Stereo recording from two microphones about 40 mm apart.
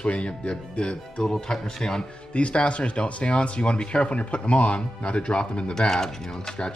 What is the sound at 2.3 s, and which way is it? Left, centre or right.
Speech, left.